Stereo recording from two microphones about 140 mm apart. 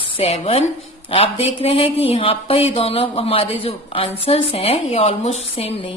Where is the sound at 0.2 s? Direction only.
45° left (ahead or behind).